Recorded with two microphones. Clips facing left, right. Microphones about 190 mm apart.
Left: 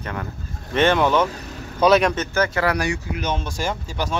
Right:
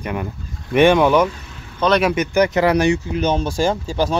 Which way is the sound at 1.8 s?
5° left (ahead or behind).